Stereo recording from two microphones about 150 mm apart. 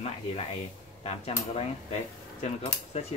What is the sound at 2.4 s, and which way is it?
Speech, 45° left (ahead or behind).